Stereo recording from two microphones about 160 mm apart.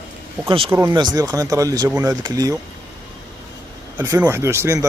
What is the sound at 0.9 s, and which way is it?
Speech, 25° right (ahead or behind).